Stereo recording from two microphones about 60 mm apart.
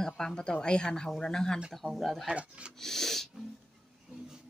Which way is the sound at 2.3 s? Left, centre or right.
Centre.